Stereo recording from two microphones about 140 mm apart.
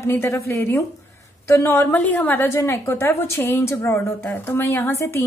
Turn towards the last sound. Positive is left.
turn(degrees=20)  # may be behind; listen again after turning